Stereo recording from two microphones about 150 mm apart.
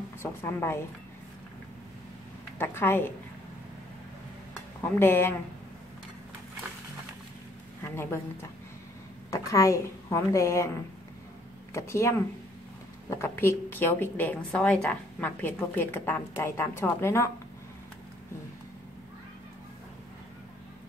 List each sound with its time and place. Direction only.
0.2 s a woman's voice: 15° left (ahead or behind)
2.6 s a woman's voice: 15° left (ahead or behind)
4.9 s a woman's voice: 15° left (ahead or behind)
7.8 s a woman's voice: 15° left (ahead or behind)
11.7 s a woman's voice: 20° left (ahead or behind)